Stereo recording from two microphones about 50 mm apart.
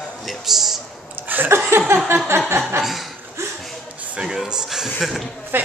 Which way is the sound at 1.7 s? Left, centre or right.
Right.